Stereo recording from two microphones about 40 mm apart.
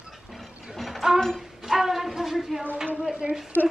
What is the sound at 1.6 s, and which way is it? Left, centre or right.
Speech, centre.